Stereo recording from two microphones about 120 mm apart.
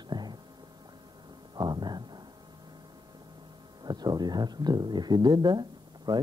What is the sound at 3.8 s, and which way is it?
Speech, 35° right (ahead or behind).